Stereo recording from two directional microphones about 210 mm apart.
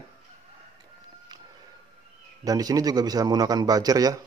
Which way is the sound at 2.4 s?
15° right (ahead or behind).